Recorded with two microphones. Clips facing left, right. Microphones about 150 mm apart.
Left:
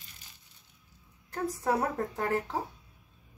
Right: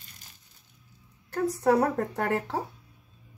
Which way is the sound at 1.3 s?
75° right (ahead or behind).